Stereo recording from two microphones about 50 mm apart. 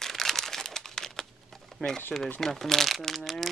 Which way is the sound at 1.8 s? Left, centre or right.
Centre.